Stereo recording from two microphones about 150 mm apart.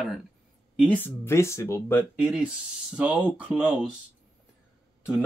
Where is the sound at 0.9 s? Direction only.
15° left (ahead or behind).